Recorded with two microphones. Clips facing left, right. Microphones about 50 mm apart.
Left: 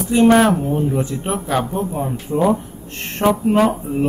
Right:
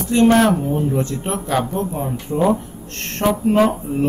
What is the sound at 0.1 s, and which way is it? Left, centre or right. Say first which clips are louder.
A man's voice: left 1 dB; centre.